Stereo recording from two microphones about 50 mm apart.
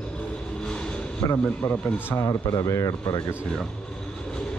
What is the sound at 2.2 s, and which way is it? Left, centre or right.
Speech, left.